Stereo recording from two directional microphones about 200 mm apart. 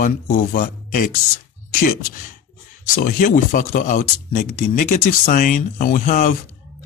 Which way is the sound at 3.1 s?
45° left (ahead or behind).